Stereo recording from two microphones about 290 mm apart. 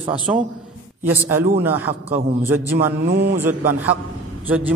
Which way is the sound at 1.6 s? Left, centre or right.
Centre.